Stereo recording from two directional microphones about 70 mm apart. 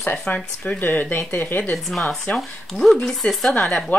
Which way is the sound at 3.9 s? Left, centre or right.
Left.